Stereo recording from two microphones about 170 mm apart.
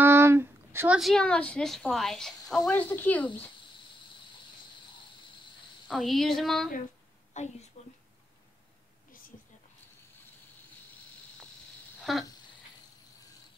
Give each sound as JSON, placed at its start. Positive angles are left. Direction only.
{"t": 0.0, "sound": "a sound", "side_deg": -15}
{"t": 0.9, "sound": "a woman's voice", "side_deg": 0}
{"t": 5.9, "sound": "a woman's voice", "side_deg": 0}
{"t": 7.3, "sound": "a woman's voice", "side_deg": 45}
{"t": 7.8, "sound": "whispering", "side_deg": 40}
{"t": 12.0, "sound": "a sound", "side_deg": 0}